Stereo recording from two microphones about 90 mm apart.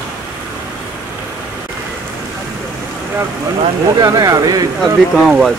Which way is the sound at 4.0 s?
40° right (ahead or behind).